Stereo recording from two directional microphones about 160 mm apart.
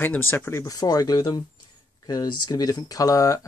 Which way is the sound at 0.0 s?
15° left (ahead or behind).